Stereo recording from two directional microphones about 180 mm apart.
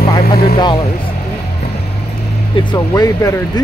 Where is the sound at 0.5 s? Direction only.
25° left (ahead or behind).